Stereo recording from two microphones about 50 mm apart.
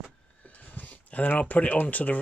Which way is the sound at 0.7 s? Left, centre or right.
Left.